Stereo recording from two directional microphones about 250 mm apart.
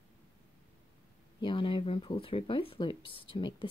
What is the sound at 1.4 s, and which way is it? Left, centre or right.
Speech, centre.